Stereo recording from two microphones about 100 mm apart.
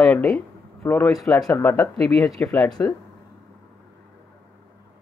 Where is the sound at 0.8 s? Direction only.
20° left (ahead or behind).